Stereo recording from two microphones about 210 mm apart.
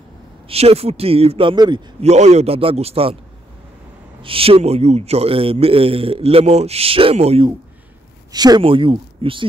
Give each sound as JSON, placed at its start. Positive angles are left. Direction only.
{"t": 0.5, "sound": "a man's voice", "side_deg": -30}
{"t": 4.2, "sound": "a man's voice", "side_deg": -25}